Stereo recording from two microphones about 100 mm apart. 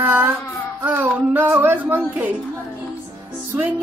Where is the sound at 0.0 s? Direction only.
20° right (ahead or behind).